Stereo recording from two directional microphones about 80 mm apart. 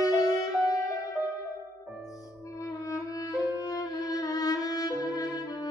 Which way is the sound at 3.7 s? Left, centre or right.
Left.